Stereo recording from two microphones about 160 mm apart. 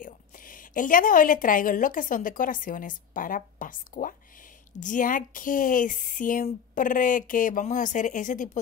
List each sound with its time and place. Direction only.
0.0 s a woman's voice: 60° left (ahead or behind)